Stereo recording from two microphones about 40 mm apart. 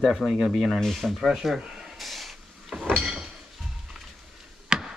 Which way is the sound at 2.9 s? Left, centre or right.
Centre.